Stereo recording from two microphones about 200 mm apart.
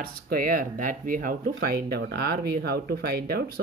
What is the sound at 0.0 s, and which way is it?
Speech, 45° right (ahead or behind).